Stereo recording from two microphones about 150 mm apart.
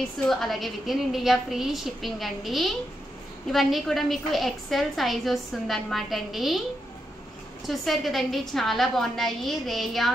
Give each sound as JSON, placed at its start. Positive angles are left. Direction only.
{"t": 0.3, "sound": "a woman's voice", "side_deg": 0}
{"t": 7.6, "sound": "a woman's voice", "side_deg": 0}